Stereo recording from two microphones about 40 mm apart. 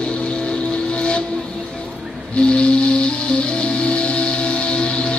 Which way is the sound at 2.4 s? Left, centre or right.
Left.